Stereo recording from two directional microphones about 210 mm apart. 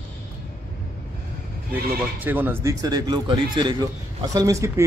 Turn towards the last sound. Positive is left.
turn(degrees=-15)  # may be behind; listen again after turning